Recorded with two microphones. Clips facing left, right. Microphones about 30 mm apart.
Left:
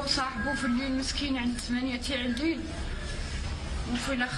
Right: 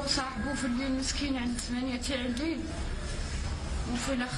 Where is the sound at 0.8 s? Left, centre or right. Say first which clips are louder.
Left 1 dB; left.